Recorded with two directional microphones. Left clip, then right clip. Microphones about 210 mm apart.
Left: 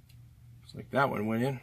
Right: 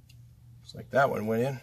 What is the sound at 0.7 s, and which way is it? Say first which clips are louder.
Speech: right 4 dB; 20° right (ahead or behind).